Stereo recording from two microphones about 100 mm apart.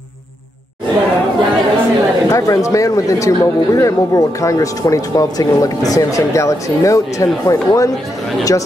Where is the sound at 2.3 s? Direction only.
35° left (ahead or behind).